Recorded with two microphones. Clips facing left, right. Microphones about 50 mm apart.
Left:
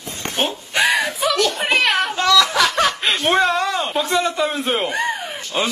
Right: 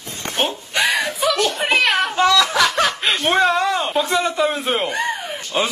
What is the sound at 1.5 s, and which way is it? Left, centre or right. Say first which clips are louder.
Snicker: even; centre.